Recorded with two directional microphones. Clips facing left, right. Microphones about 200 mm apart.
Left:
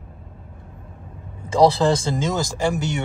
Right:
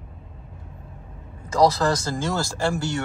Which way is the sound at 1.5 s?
25° left (ahead or behind).